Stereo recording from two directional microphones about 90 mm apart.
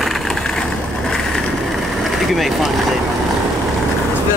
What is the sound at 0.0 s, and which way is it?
Vehicle, 5° left (ahead or behind).